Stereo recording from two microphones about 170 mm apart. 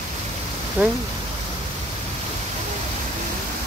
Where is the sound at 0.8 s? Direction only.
10° right (ahead or behind).